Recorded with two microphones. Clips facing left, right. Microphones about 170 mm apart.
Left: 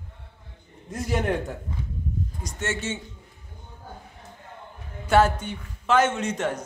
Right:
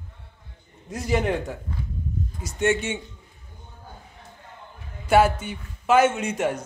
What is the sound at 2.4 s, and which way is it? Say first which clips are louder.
Speech: right 9 dB; 10° right (ahead or behind).